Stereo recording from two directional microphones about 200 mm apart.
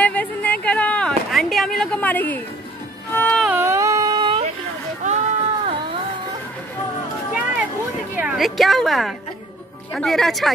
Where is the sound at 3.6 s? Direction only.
15° right (ahead or behind).